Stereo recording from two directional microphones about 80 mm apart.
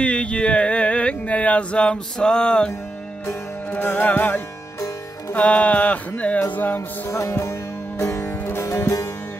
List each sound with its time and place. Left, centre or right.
0.0 s a sound: centre
3.3 s music: left
7.1 s music: left